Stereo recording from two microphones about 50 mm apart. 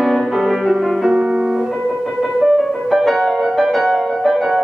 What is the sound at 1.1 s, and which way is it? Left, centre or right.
Music, centre.